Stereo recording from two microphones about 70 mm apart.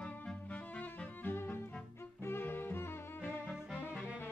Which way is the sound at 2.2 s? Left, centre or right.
Left.